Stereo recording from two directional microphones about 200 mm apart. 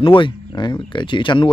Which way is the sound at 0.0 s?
25° left (ahead or behind).